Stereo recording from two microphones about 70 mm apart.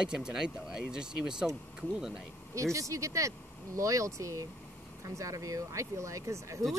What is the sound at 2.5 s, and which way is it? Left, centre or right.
Speech, right.